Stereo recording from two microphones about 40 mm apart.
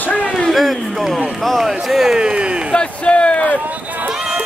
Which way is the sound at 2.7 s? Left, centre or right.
Left.